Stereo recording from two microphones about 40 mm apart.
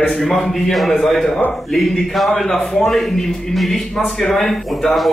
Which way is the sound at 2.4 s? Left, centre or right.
Centre.